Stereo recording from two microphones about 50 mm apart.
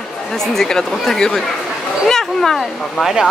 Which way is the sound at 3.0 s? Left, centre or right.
Centre.